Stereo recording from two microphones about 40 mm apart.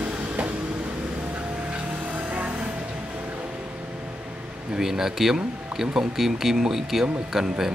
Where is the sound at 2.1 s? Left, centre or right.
Right.